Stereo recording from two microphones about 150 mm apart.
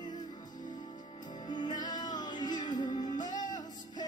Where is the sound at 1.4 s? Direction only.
30° left (ahead or behind).